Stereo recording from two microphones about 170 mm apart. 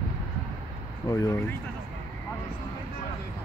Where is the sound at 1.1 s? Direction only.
15° left (ahead or behind).